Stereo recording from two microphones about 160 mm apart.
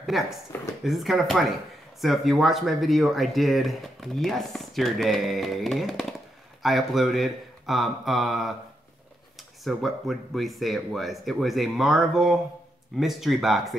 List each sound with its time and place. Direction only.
0.0 s speech: centre (ahead or behind)
9.7 s speech: centre (ahead or behind)